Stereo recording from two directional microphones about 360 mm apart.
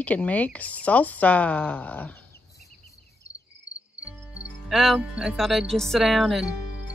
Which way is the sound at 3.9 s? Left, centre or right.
Centre.